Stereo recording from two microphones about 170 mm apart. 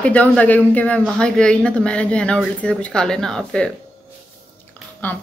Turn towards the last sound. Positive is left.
turn(degrees=10)  # may be behind; listen again after turning